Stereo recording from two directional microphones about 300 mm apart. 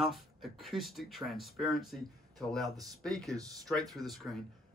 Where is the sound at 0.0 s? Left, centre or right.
Centre.